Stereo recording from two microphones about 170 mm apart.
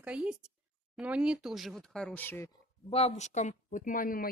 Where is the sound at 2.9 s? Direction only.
40° left (ahead or behind); by 4.3 s 55° left (ahead or behind).